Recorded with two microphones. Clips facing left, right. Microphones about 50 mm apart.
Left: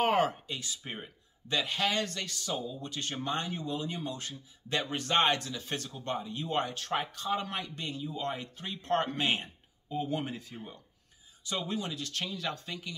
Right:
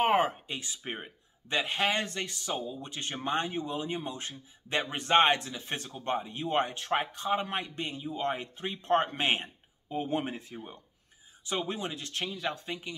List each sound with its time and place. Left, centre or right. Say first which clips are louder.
0.0 s speech: right 1 dB; right